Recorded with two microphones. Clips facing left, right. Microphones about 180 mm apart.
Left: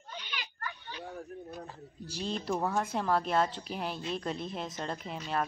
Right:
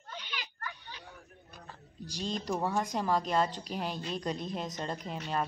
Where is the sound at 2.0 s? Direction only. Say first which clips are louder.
Left 1 dB; 5° left (ahead or behind).